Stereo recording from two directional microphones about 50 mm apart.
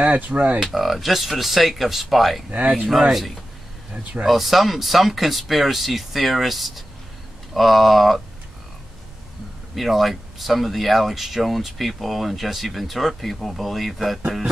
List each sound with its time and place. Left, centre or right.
0.0 s speech: right
0.6 s speech: centre
9.8 s speech: centre